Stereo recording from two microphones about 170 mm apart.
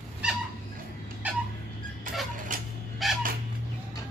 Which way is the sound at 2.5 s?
50° right (ahead or behind).